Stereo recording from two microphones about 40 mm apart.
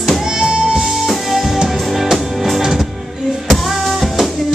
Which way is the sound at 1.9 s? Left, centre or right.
Centre.